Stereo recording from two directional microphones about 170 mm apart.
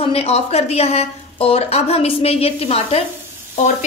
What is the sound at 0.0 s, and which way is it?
A woman's voice, 35° left (ahead or behind).